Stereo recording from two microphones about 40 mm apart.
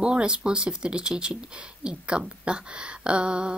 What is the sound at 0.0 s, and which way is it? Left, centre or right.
Speech, right.